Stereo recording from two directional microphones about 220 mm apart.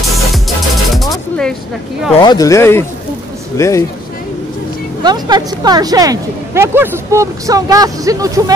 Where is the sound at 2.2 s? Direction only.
20° left (ahead or behind).